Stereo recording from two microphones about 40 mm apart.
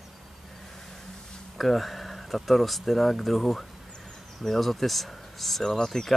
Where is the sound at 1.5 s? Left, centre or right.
Centre.